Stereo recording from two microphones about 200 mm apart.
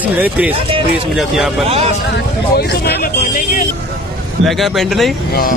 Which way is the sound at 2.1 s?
55° left (ahead or behind).